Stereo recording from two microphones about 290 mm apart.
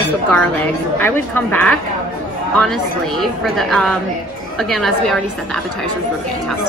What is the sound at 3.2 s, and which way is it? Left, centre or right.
A woman's voice, centre.